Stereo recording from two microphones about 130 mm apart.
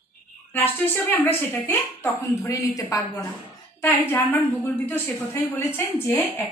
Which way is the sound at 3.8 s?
15° left (ahead or behind).